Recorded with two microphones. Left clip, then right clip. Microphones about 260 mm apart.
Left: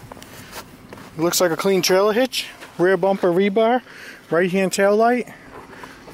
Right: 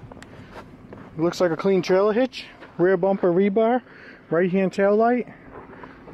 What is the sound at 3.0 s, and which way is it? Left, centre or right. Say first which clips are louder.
Speech: left 2 dB; centre.